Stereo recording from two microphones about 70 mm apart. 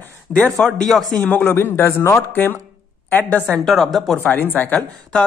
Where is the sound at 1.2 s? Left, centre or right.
Left.